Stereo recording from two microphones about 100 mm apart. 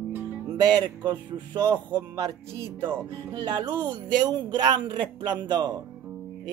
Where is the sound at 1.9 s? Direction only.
40° right (ahead or behind).